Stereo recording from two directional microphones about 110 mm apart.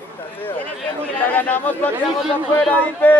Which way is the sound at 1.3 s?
15° left (ahead or behind).